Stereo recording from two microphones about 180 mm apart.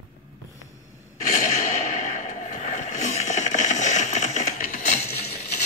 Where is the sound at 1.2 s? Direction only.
40° left (ahead or behind).